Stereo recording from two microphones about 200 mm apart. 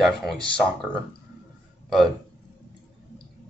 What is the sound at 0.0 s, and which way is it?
Speech, centre (ahead or behind).